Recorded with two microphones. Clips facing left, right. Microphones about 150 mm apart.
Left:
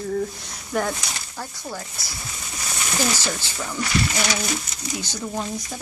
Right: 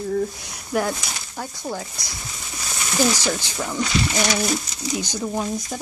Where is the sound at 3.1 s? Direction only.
15° right (ahead or behind).